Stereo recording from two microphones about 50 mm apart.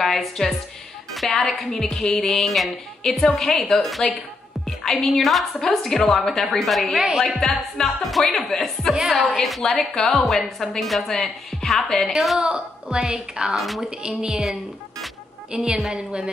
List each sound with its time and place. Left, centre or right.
0.0 s a woman's voice: centre
1.1 s a sound: centre
1.5 s a woman's voice: centre
4.6 s music: centre
5.1 s a woman's voice: centre
12.4 s a woman's voice: centre
13.6 s a woman's voice: centre
13.8 s a woman's voice: centre
15.5 s a woman's voice: centre